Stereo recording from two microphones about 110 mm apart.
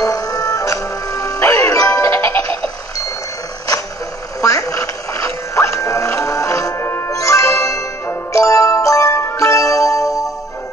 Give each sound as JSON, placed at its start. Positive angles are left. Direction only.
{"t": 0.0, "sound": "music", "side_deg": 35}
{"t": 4.4, "sound": "music", "side_deg": 30}